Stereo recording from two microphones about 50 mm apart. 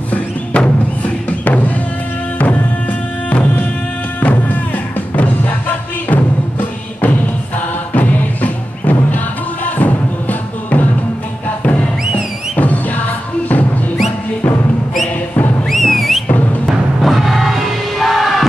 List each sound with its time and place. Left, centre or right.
0.1 s music: left
7.9 s music: left
15.7 s music: centre